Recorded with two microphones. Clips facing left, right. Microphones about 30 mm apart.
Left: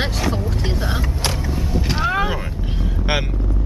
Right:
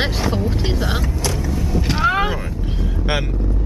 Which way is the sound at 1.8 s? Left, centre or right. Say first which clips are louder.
Right 4 dB; centre.